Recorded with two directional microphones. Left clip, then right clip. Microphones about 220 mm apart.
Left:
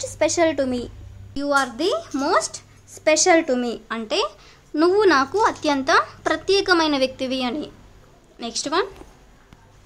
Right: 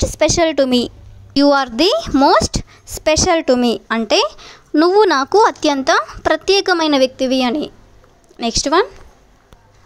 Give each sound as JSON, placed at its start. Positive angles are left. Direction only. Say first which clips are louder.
{"t": 0.0, "sound": "a woman's voice", "louder": "right 5 dB", "side_deg": -40}